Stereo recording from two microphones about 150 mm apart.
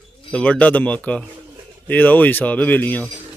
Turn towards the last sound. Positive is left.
turn(degrees=10)  # may be behind; listen again after turning